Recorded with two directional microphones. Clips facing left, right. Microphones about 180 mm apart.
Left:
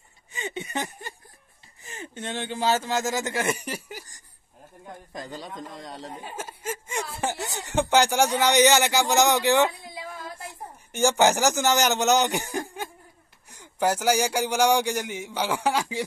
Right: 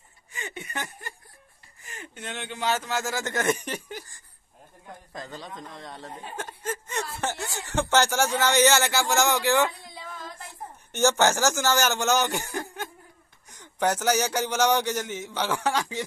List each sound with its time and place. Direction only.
0.3 s a sound: 25° left (ahead or behind)
2.1 s speech: 30° left (ahead or behind); by 4.0 s 10° left (ahead or behind)
6.3 s chuckle: 5° left (ahead or behind)
7.2 s speech: 15° left (ahead or behind)
10.9 s speech: 10° left (ahead or behind)